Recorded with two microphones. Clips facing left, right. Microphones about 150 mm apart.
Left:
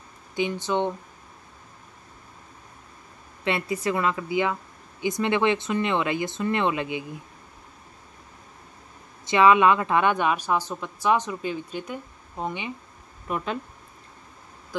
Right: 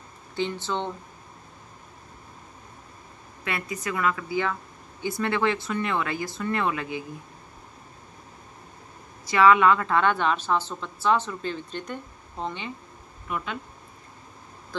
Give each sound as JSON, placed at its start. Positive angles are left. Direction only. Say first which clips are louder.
{"t": 0.4, "sound": "a woman's voice", "louder": "left 4 dB", "side_deg": 15}
{"t": 3.4, "sound": "speech", "louder": "left 5 dB", "side_deg": 25}
{"t": 9.2, "sound": "a woman's voice", "louder": "left 1 dB", "side_deg": 20}
{"t": 13.3, "sound": "speech", "louder": "left 3 dB", "side_deg": 35}